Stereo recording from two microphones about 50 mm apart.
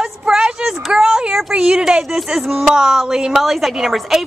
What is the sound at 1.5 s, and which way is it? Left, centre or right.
A woman's voice, centre.